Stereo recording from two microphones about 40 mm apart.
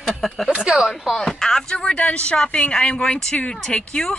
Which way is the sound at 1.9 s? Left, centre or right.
Left.